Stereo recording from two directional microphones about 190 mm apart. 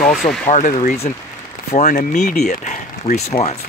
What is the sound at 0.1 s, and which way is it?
Speech, centre (ahead or behind).